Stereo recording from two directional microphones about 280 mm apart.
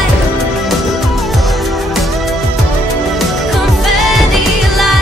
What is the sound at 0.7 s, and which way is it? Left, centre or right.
Music, centre.